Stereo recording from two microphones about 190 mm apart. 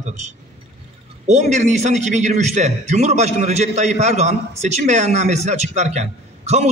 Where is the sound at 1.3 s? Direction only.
40° right (ahead or behind).